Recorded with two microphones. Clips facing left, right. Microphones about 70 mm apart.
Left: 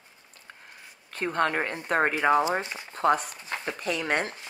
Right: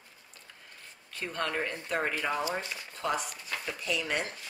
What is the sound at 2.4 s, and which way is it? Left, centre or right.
Speech, left.